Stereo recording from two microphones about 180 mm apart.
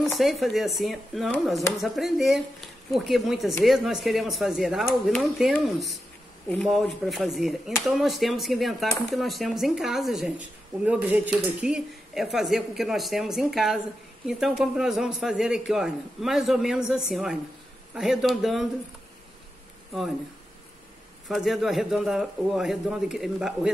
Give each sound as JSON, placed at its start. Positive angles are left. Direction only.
{"t": 0.0, "sound": "speech", "side_deg": 0}
{"t": 21.3, "sound": "speech", "side_deg": 0}